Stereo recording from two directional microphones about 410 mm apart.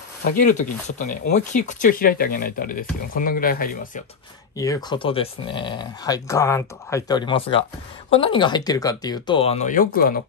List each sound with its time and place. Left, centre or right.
0.2 s speech: centre
4.6 s speech: centre